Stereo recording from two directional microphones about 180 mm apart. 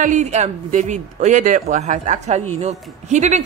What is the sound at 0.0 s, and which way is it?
Speech, 40° right (ahead or behind).